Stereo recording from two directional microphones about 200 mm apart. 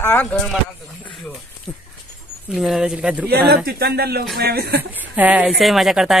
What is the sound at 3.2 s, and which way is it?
Speech, 50° right (ahead or behind).